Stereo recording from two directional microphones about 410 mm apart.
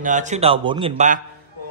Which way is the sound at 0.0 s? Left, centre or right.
Centre.